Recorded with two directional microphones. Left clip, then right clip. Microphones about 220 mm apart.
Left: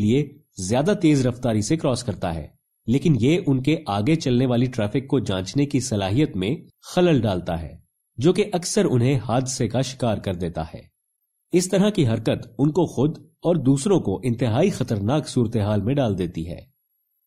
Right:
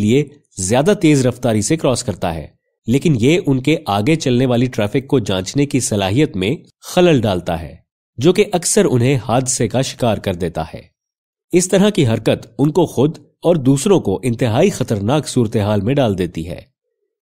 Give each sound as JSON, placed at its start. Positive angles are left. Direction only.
{"t": 0.0, "sound": "speech", "side_deg": -35}